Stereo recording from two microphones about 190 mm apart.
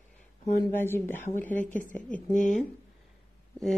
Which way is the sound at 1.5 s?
40° left (ahead or behind).